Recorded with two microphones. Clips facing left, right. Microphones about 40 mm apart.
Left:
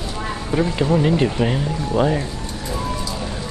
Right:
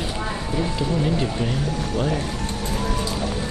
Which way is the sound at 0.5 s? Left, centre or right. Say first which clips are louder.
Left 7 dB; left.